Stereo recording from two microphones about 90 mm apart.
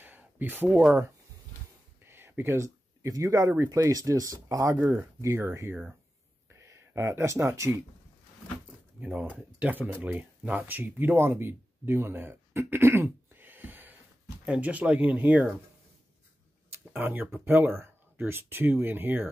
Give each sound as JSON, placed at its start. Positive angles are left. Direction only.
{"t": 0.0, "sound": "a sound", "side_deg": -20}
{"t": 2.0, "sound": "speech", "side_deg": -25}
{"t": 9.0, "sound": "speech", "side_deg": -15}
{"t": 16.9, "sound": "speech", "side_deg": -20}